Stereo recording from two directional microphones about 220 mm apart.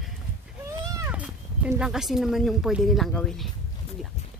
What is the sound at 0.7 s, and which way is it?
Speech, 15° right (ahead or behind).